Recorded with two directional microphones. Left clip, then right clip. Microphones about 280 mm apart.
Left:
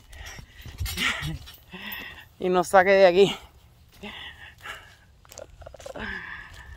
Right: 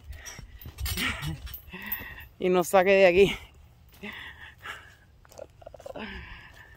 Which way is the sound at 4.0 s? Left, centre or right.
Centre.